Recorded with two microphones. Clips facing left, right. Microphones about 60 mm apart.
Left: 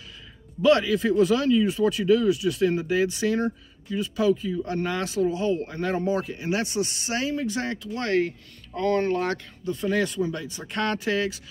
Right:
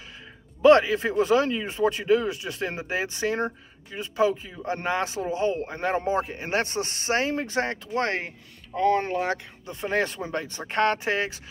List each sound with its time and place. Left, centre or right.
0.6 s speech: right
8.8 s speech: centre
9.7 s speech: right